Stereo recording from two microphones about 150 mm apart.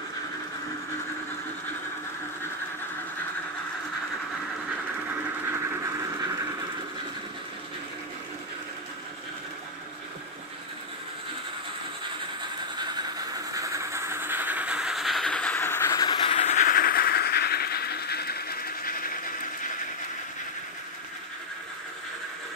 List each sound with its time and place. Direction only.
13.3 s train: 25° right (ahead or behind); by 16.0 s 15° left (ahead or behind)
16.0 s train: 30° left (ahead or behind)
16.6 s train: 80° left